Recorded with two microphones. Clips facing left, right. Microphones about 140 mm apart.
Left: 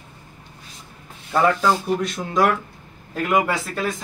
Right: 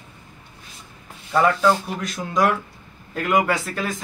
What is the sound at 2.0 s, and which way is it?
Speech, centre (ahead or behind).